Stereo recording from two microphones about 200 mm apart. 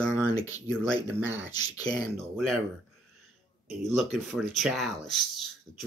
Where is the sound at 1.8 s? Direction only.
5° left (ahead or behind).